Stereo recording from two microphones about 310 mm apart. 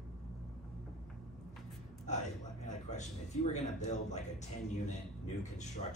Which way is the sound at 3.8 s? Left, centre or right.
Left.